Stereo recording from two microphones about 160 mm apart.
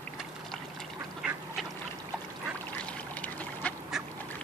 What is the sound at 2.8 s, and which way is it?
Duck, 10° left (ahead or behind).